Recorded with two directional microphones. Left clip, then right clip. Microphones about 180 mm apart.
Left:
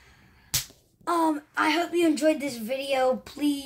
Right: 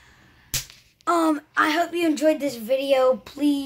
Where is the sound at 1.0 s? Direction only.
35° right (ahead or behind).